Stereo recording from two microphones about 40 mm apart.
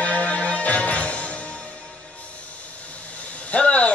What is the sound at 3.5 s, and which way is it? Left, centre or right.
Hiss, left.